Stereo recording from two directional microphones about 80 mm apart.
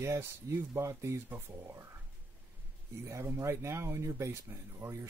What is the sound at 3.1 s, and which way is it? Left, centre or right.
Speech, right.